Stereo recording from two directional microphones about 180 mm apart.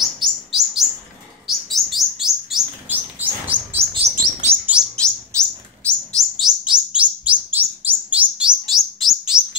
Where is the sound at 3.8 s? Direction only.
35° right (ahead or behind).